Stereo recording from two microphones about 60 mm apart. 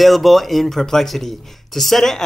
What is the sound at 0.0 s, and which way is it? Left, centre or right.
Speech, centre.